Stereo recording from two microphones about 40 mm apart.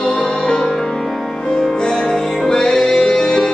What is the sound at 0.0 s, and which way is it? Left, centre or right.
Music, centre.